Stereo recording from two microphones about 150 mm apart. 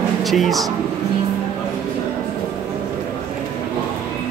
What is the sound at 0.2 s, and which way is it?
Speech, centre (ahead or behind).